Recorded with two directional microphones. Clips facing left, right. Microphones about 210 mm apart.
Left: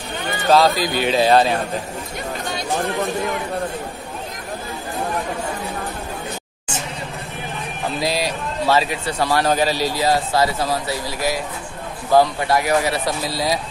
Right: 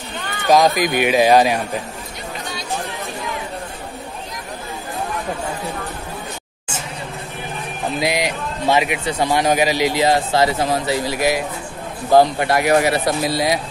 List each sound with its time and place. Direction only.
0.5 s speech: 15° right (ahead or behind)
8.0 s speech: 20° right (ahead or behind)
12.4 s speech: 65° right (ahead or behind)
12.7 s speech: 20° right (ahead or behind)